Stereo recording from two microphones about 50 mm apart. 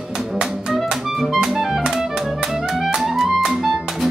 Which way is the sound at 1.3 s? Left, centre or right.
Centre.